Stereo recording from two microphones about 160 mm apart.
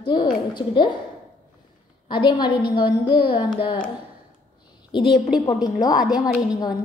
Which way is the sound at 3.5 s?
30° left (ahead or behind).